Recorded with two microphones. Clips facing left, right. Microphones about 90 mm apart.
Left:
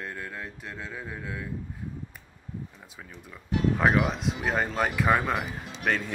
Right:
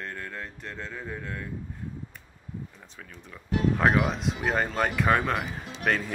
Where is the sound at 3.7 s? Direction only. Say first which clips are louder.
Even; centre (ahead or behind).